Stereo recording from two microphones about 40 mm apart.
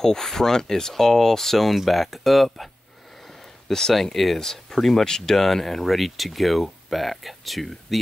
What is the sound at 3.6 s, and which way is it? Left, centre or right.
Speech, centre.